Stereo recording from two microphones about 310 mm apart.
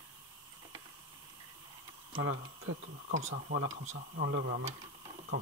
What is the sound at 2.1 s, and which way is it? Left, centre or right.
Speech, right.